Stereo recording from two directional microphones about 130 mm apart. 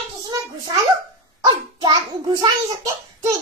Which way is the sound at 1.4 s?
35° right (ahead or behind).